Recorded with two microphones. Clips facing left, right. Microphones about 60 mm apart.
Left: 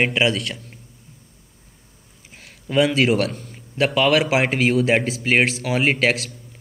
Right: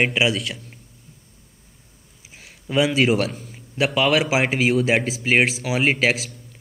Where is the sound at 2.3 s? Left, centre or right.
Centre.